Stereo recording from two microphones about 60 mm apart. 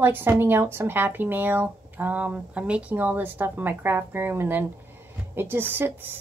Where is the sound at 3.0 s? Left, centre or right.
Right.